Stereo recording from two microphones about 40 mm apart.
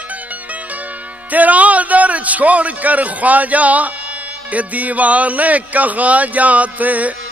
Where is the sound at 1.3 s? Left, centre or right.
Right.